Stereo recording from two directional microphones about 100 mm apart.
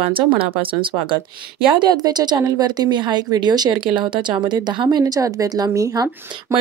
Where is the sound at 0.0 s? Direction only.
65° right (ahead or behind).